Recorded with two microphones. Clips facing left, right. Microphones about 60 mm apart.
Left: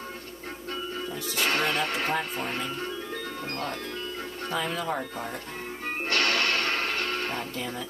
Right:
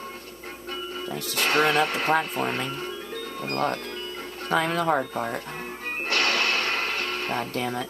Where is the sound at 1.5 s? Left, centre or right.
Centre.